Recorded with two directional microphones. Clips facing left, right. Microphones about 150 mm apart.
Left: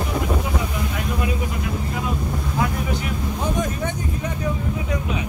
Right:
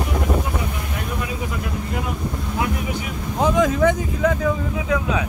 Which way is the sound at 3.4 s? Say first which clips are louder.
Right 9 dB; 90° right.